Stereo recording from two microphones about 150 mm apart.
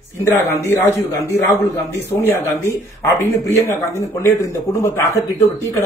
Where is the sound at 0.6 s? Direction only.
15° left (ahead or behind).